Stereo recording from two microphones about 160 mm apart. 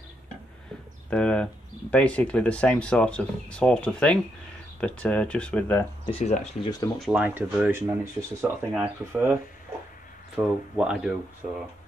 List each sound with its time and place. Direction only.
1.1 s speech: 5° left (ahead or behind)
6.0 s speech: 40° left (ahead or behind)
6.6 s speech: 25° left (ahead or behind)
7.0 s speech: 10° right (ahead or behind)